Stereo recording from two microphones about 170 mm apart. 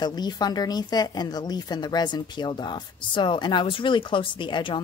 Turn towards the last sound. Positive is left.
turn(degrees=30)  # may be behind; listen again after turning